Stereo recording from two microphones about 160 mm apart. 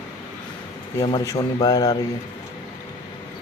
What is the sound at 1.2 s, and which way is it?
Speech, 25° left (ahead or behind).